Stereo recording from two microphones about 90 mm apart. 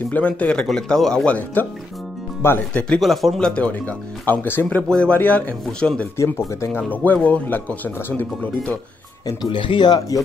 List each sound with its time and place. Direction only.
0.1 s speech: 15° left (ahead or behind)
3.0 s speech: centre (ahead or behind); by 4.6 s 25° left (ahead or behind)
4.6 s speech: 10° left (ahead or behind)
6.1 s speech: 30° left (ahead or behind)
9.4 s speech: 65° left (ahead or behind)
9.9 s speech: 40° left (ahead or behind)